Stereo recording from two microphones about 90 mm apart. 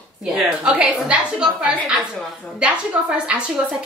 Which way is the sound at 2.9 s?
10° right (ahead or behind).